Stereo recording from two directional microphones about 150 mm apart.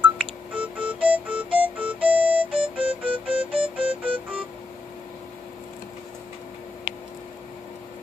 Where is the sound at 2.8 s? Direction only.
35° right (ahead or behind).